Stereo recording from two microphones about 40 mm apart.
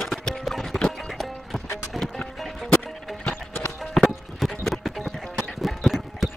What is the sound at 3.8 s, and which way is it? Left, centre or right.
Music, centre.